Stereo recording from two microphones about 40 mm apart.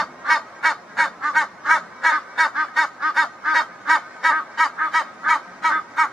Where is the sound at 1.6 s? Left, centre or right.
Centre.